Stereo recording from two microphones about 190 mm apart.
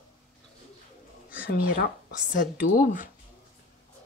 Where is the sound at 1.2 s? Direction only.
45° left (ahead or behind).